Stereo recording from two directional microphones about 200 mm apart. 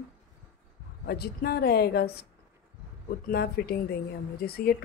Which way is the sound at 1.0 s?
50° left (ahead or behind).